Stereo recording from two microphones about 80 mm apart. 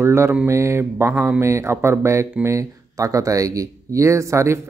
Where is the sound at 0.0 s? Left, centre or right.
Right.